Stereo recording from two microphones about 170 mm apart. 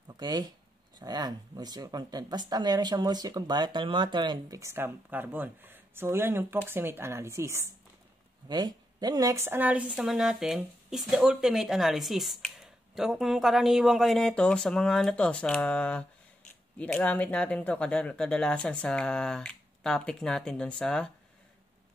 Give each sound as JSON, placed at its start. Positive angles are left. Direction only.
{"t": 0.2, "sound": "speech", "side_deg": -25}